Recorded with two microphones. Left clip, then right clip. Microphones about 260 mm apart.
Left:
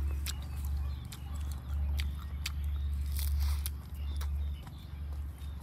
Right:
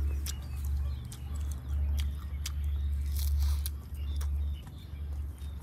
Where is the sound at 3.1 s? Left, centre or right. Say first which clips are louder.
Even; centre.